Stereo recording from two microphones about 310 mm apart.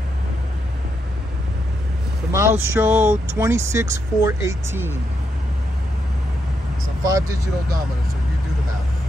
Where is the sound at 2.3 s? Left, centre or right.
Centre.